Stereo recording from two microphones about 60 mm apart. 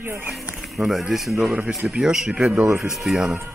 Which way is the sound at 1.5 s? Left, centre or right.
Right.